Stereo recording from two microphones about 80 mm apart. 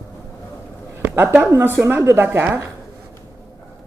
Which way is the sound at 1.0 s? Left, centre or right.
Right.